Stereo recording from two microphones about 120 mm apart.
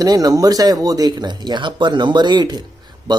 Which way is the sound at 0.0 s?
30° right (ahead or behind).